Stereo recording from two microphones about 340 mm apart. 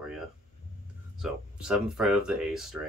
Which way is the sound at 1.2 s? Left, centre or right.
Centre.